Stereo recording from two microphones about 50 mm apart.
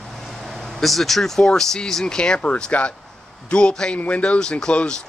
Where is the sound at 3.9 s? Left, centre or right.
Left.